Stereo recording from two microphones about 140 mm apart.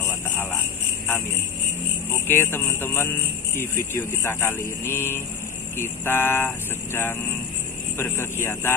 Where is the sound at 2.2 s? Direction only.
15° left (ahead or behind).